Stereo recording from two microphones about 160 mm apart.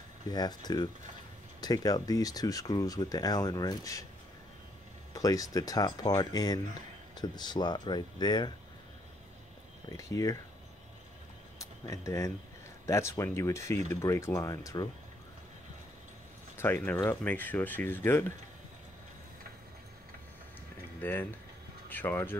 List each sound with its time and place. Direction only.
0.3 s speech: 25° left (ahead or behind)
5.1 s speech: 20° left (ahead or behind)
9.8 s speech: 20° left (ahead or behind)
11.5 s a sound: 20° left (ahead or behind)
12.8 s speech: 20° left (ahead or behind)
16.5 s speech: 15° left (ahead or behind)
21.0 s speech: 10° left (ahead or behind)